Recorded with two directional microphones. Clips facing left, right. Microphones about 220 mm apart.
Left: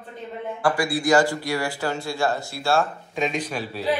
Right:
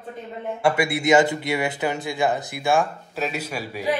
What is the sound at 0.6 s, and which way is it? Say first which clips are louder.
Speech: right 1 dB; 25° right (ahead or behind).